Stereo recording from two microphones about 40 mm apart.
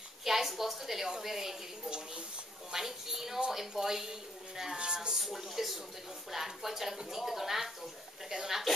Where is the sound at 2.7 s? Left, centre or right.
Centre.